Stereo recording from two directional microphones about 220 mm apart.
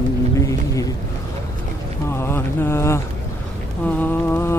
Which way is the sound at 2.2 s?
10° left (ahead or behind).